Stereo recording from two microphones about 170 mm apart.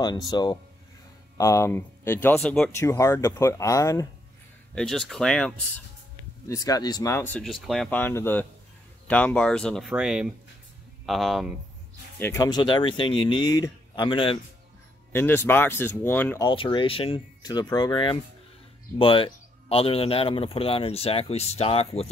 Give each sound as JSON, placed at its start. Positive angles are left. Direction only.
{"t": 0.0, "sound": "speech", "side_deg": 20}
{"t": 2.8, "sound": "speech", "side_deg": 15}
{"t": 4.7, "sound": "speech", "side_deg": 0}
{"t": 6.5, "sound": "speech", "side_deg": 20}
{"t": 7.4, "sound": "speech", "side_deg": 0}
{"t": 12.2, "sound": "speech", "side_deg": 20}
{"t": 15.1, "sound": "speech", "side_deg": 15}
{"t": 16.4, "sound": "speech", "side_deg": 30}